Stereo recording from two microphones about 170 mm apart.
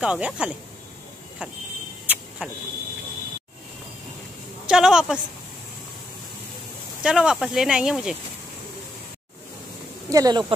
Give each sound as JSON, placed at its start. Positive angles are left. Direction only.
{"t": 0.0, "sound": "speech", "side_deg": -5}
{"t": 2.0, "sound": "vehicle", "side_deg": -5}
{"t": 4.6, "sound": "speech", "side_deg": -5}
{"t": 7.0, "sound": "speech", "side_deg": -5}
{"t": 10.0, "sound": "speech", "side_deg": -20}